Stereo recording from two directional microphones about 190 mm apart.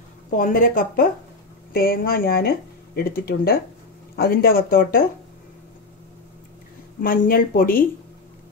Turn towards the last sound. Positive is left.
turn(degrees=50)  # may be behind; listen again after turning